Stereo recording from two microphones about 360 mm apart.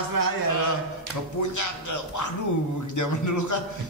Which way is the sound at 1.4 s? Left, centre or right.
Left.